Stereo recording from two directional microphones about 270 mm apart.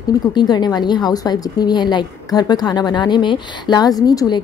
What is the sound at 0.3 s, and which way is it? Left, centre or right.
A woman's voice, centre.